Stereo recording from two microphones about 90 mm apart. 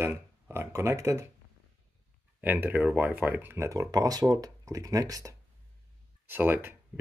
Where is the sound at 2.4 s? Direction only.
20° right (ahead or behind); by 5.3 s 40° right (ahead or behind).